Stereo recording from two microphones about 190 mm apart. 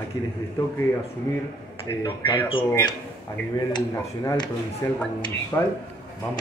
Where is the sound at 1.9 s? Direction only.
25° left (ahead or behind).